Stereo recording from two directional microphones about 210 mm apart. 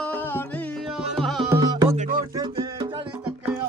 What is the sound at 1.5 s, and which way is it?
Music, 20° right (ahead or behind).